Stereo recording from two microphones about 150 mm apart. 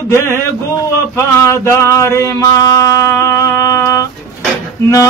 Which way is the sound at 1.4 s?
20° left (ahead or behind).